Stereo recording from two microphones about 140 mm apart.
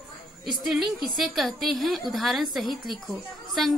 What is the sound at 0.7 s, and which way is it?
A woman's voice, 5° right (ahead or behind).